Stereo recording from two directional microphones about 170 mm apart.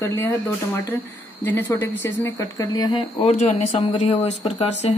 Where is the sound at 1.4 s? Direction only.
10° left (ahead or behind).